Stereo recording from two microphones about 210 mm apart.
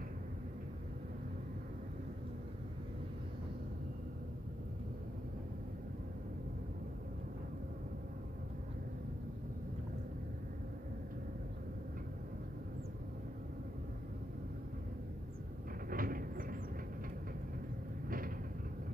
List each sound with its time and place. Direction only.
15.9 s vehicle: 45° right (ahead or behind)
18.0 s vehicle: 40° right (ahead or behind)